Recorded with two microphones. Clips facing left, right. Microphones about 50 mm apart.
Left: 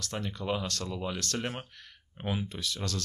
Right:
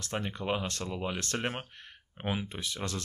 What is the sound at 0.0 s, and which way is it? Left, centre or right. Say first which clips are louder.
Speech: right 1 dB; right.